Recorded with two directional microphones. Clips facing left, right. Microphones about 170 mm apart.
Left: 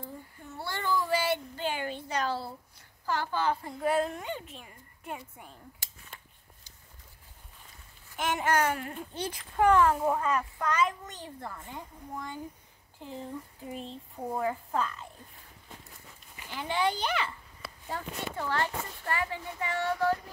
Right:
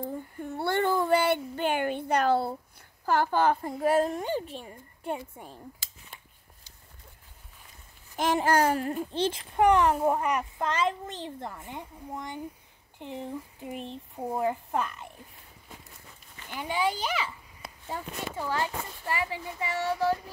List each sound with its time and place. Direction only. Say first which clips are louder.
0.0 s child singing: right 9 dB; 55° right (ahead or behind)
3.1 s a woman's voice: right 6 dB; 50° right (ahead or behind); by 5.6 s 30° right (ahead or behind)
8.2 s a woman's voice: right 4 dB; 35° right (ahead or behind); by 15.0 s 20° right (ahead or behind)
16.5 s speech: right 1 dB; 10° right (ahead or behind)